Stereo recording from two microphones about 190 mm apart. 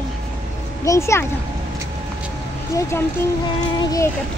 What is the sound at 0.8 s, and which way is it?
Speech, 15° left (ahead or behind).